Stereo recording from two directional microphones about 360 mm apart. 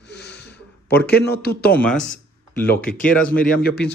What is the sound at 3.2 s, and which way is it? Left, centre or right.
Speech, left.